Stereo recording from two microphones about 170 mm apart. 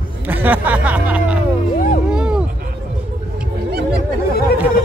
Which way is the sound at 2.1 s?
5° right (ahead or behind).